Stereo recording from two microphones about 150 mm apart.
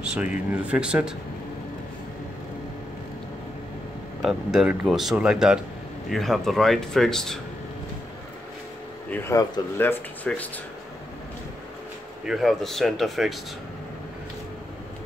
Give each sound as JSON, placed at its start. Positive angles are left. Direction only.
{"t": 0.0, "sound": "speech", "side_deg": -5}
{"t": 4.2, "sound": "speech", "side_deg": -5}
{"t": 9.3, "sound": "speech", "side_deg": 20}
{"t": 12.3, "sound": "speech", "side_deg": 0}